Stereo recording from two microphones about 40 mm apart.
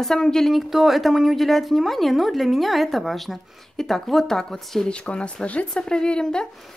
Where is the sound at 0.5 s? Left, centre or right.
Centre.